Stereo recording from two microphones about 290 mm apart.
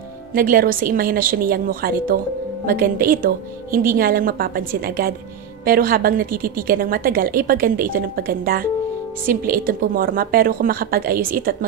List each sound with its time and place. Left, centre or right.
0.3 s a woman's voice: right